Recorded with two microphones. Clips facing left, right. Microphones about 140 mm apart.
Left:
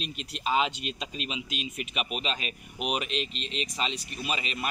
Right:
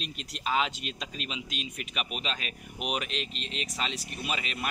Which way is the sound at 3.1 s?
45° right (ahead or behind).